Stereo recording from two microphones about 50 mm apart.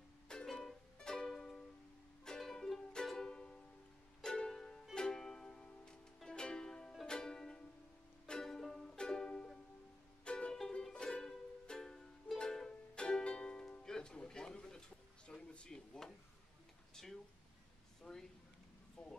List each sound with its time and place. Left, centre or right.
0.5 s music: centre
12.4 s ukulele: centre
16.9 s a sound: centre